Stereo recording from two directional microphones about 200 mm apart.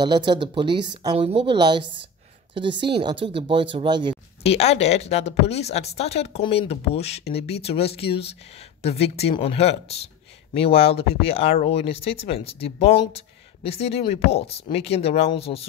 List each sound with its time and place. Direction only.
0.0 s speech: 20° right (ahead or behind)
4.4 s speech: 30° left (ahead or behind)